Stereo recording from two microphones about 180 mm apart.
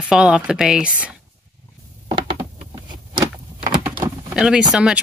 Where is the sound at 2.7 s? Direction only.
25° right (ahead or behind).